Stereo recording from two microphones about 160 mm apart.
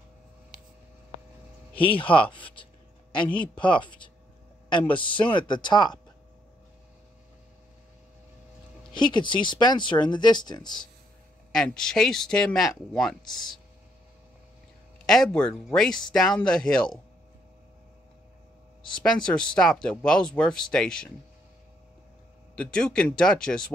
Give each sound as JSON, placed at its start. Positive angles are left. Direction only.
{"t": 1.7, "sound": "speech", "side_deg": 35}
{"t": 2.3, "sound": "writing", "side_deg": 30}
{"t": 3.6, "sound": "speech", "side_deg": 30}
{"t": 8.9, "sound": "speech", "side_deg": 30}
{"t": 11.5, "sound": "speech", "side_deg": 5}
{"t": 15.0, "sound": "speech", "side_deg": 0}
{"t": 18.9, "sound": "speech", "side_deg": 5}
{"t": 22.6, "sound": "speech", "side_deg": 5}